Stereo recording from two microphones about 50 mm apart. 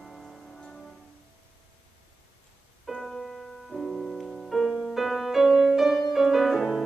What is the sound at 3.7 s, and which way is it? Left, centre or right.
Piano, left.